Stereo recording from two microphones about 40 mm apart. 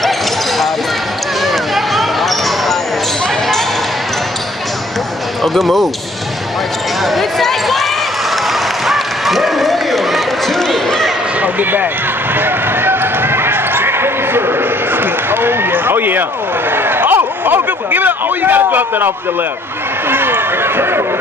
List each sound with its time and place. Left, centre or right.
1.4 s basketball bounce: centre
5.4 s speech: centre
7.2 s basketball bounce: centre
8.8 s run: centre
11.4 s speech: right
12.4 s basketball bounce: right
16.7 s a sound: right
17.9 s speech: right
20.1 s run: right